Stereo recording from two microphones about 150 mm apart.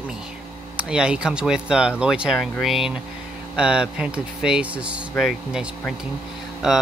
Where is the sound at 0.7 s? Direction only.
5° right (ahead or behind).